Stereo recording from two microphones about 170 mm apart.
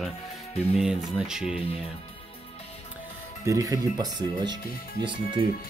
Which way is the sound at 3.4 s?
20° right (ahead or behind).